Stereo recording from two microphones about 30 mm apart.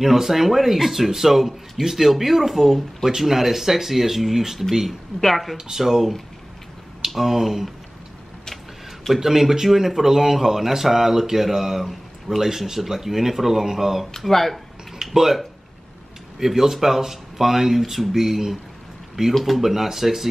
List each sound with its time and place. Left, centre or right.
0.0 s a man's voice: centre
5.2 s speech: centre
5.7 s a man's voice: centre
9.1 s a man's voice: centre
14.3 s speech: centre
15.1 s a man's voice: centre